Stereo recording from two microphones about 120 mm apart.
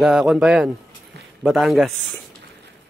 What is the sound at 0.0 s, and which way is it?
A man's voice, 5° right (ahead or behind).